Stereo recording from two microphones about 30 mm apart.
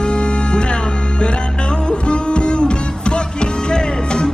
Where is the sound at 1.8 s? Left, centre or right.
Left.